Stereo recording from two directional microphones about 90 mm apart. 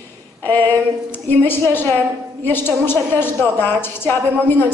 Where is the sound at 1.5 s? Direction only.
25° left (ahead or behind).